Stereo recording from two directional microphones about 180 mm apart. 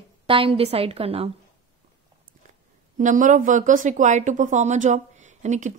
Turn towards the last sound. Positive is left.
turn(degrees=-40)  # may be behind; listen again after turning